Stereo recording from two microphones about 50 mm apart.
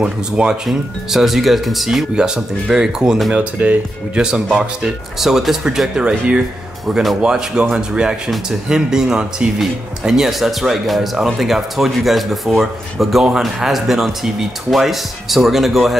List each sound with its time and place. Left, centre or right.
0.0 s speech: centre
0.7 s speech: centre
2.1 s speech: centre
3.3 s speech: right
4.2 s speech: centre